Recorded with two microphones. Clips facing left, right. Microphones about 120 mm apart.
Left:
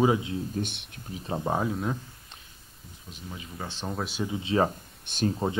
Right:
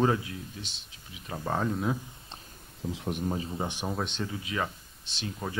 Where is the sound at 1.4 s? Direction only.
15° left (ahead or behind).